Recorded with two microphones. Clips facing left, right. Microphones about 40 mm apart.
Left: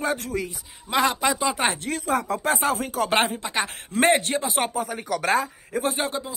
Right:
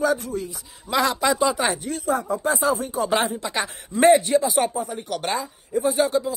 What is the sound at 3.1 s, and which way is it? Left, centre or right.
Speech, left.